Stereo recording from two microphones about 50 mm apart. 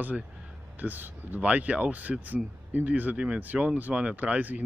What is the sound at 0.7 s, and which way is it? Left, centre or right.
Speech, right.